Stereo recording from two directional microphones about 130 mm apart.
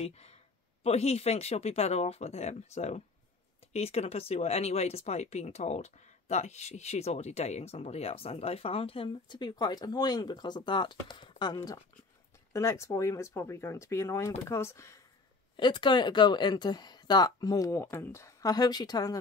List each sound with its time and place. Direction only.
0.0 s speech: 55° left (ahead or behind); by 15.0 s 20° left (ahead or behind)
15.5 s speech: 35° left (ahead or behind)